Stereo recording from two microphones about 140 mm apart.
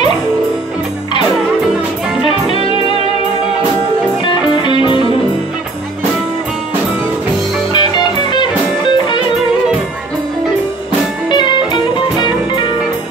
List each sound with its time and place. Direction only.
2.2 s music: 40° left (ahead or behind)
4.2 s music: 35° left (ahead or behind)
7.7 s music: 35° left (ahead or behind)
11.2 s music: 35° left (ahead or behind)